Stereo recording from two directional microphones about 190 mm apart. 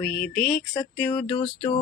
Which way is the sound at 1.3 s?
30° left (ahead or behind).